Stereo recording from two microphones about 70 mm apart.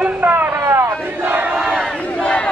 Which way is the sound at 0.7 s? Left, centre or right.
Right.